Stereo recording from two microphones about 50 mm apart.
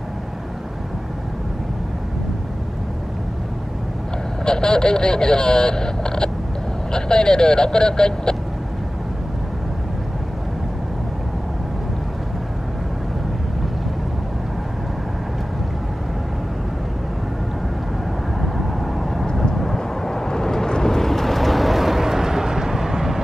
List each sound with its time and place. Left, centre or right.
4.5 s speech: centre
18.4 s vehicle: centre